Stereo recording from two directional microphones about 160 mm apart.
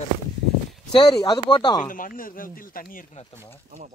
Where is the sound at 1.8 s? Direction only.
60° left (ahead or behind).